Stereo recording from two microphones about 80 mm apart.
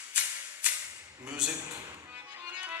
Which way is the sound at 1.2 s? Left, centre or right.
Centre.